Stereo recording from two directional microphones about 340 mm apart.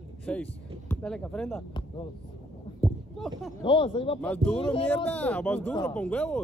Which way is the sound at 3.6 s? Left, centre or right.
Centre.